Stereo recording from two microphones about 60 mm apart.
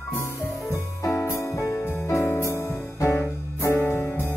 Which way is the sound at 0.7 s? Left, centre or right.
Left.